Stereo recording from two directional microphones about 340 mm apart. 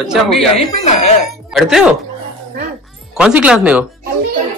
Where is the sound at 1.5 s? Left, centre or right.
Centre.